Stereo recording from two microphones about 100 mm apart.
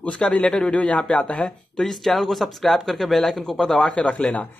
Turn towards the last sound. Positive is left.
turn(degrees=10)  # may be behind; listen again after turning